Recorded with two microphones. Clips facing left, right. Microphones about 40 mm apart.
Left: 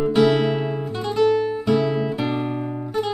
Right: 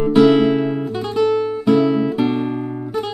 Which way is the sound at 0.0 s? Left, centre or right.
Centre.